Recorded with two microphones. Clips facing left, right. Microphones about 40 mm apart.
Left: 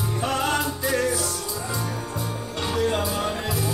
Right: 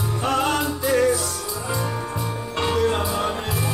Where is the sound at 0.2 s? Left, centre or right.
Centre.